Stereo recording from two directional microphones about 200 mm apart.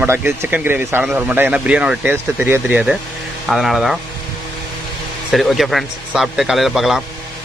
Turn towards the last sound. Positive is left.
turn(degrees=0)  # may be behind; listen again after turning